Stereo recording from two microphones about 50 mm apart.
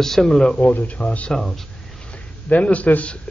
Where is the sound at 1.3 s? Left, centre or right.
Centre.